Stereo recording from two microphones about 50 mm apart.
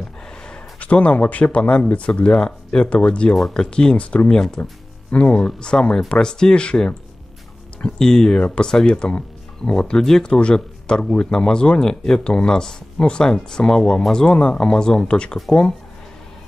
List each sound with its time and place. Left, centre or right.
0.5 s speech: left
3.3 s speech: centre
3.7 s speech: left
5.1 s speech: left
5.4 s speech: centre
8.0 s speech: centre